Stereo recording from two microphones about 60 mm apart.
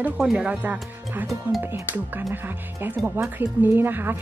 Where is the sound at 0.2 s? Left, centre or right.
Centre.